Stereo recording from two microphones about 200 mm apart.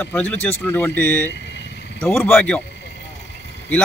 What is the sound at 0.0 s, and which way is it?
A man's voice, 10° left (ahead or behind).